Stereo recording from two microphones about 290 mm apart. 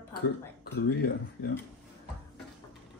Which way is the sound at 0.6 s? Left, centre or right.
Left.